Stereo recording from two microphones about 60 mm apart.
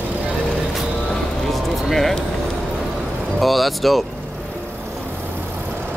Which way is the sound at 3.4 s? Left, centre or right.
Centre.